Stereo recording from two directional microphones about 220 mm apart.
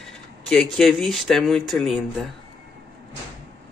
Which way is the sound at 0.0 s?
Centre (ahead or behind).